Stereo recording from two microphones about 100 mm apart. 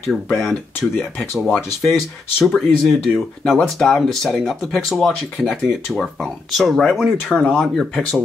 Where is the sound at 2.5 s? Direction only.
10° left (ahead or behind).